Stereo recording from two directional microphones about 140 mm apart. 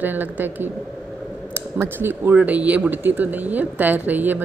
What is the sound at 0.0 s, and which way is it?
A woman's voice, 10° right (ahead or behind).